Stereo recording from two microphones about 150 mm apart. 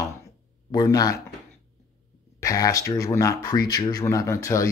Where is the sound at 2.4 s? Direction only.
25° left (ahead or behind).